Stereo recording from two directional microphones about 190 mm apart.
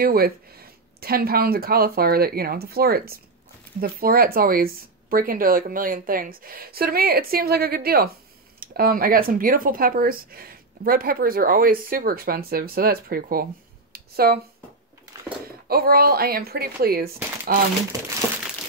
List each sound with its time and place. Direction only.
0.0 s speech: 50° right (ahead or behind)
13.9 s a sound: 55° right (ahead or behind)
15.4 s speech: 50° right (ahead or behind)